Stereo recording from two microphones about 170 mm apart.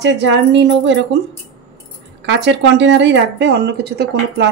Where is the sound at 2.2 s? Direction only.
90° right.